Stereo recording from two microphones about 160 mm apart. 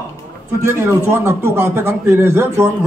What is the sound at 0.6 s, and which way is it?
A man's voice, 15° right (ahead or behind).